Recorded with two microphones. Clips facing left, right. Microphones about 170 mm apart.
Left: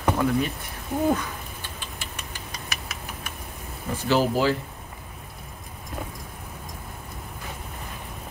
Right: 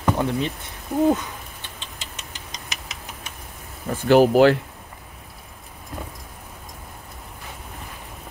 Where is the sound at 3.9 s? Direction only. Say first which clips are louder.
Right 7 dB; 60° right (ahead or behind).